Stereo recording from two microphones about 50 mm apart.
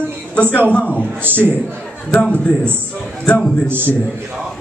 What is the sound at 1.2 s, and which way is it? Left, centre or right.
Speech, right.